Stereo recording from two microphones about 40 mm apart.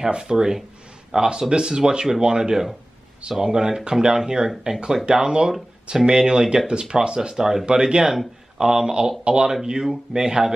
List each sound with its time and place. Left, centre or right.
0.0 s speech: centre
9.5 s speech: centre